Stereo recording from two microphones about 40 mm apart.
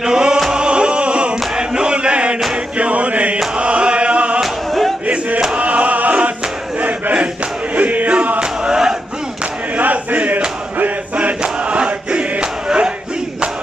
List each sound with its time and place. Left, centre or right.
0.0 s music: centre
0.6 s chant: right
5.0 s a sound: right
5.6 s choir: right
6.8 s battle cry: right
7.7 s music: right
8.4 s chant: centre
9.8 s battle cry: right
10.8 s a sound: right
11.4 s crowd: right